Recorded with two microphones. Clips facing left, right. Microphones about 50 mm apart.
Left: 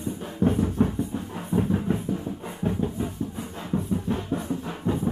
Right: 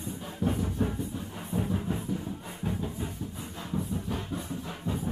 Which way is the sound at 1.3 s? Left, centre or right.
Left.